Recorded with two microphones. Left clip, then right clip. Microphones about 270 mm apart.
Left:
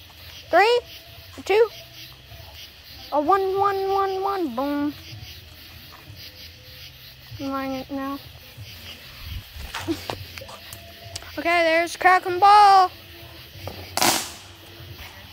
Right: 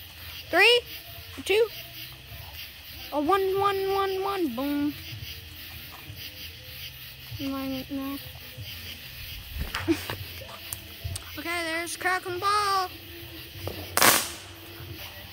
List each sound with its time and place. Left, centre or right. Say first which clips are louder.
0.5 s speech: left 2 dB; centre
3.1 s speech: left 4 dB; centre
7.5 s speech: left 7 dB; centre
10.1 s a sound: left 4 dB; centre
11.1 s speech: left 11 dB; centre
13.7 s firecracker: even; centre